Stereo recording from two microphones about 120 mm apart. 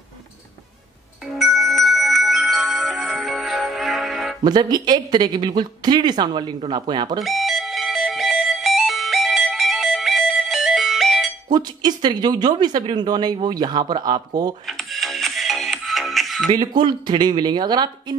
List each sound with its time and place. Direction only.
1.3 s music: centre (ahead or behind)
4.4 s speech: 35° right (ahead or behind)
7.2 s music: centre (ahead or behind)
11.5 s speech: 35° right (ahead or behind)
14.7 s music: centre (ahead or behind)
16.5 s speech: 40° right (ahead or behind)